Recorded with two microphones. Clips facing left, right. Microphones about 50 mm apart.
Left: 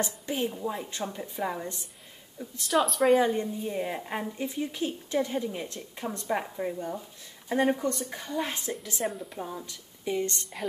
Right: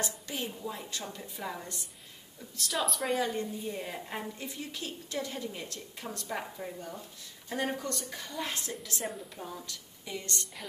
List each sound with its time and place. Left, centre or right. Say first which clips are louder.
0.0 s speech: left 6 dB; left
2.7 s speech: left 9 dB; centre
3.2 s speech: left 6 dB; left
9.0 s speech: left 7 dB; centre
9.3 s speech: left 5 dB; centre